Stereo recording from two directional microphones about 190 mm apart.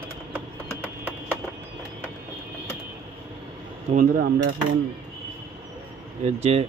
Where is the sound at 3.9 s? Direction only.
45° right (ahead or behind).